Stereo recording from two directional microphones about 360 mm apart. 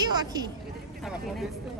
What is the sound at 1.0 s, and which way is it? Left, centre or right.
Speech, centre.